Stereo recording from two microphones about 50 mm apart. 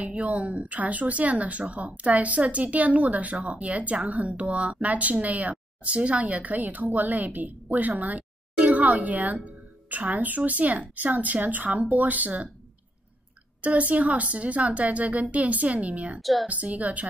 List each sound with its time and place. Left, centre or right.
0.0 s a woman's voice: right
13.6 s a woman's voice: right
16.2 s a woman's voice: centre
16.4 s a woman's voice: right